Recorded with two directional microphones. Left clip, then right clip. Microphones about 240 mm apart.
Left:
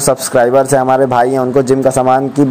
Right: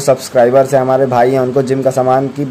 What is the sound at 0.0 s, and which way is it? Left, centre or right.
A man's voice, centre.